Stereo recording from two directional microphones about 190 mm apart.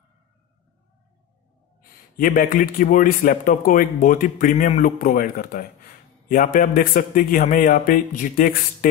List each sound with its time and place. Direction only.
1.8 s a man's voice: 45° left (ahead or behind)